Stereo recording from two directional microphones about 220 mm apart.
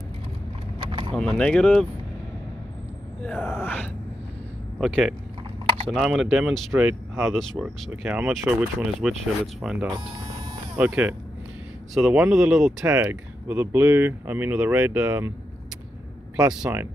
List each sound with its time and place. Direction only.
0.7 s vehicle: 25° right (ahead or behind)
1.1 s speech: 5° left (ahead or behind)
3.3 s speech: 10° left (ahead or behind); by 15.3 s 10° right (ahead or behind)
16.4 s speech: 5° right (ahead or behind)